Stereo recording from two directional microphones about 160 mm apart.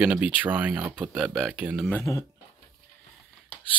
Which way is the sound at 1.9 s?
15° left (ahead or behind).